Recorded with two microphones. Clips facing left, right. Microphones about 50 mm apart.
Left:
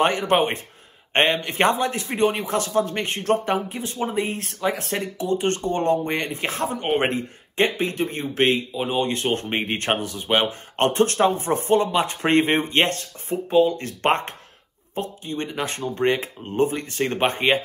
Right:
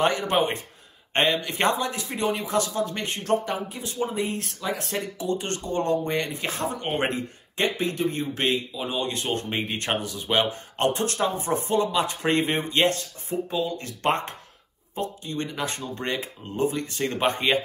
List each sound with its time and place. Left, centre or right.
0.0 s speech: left
10.8 s speech: left
11.3 s speech: left
15.0 s speech: left